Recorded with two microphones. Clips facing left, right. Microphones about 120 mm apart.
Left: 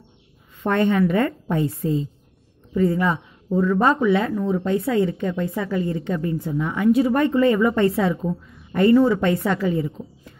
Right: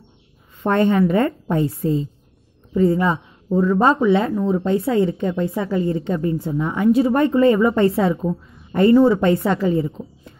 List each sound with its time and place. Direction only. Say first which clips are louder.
0.7 s a woman's voice: right 2 dB; 30° right (ahead or behind)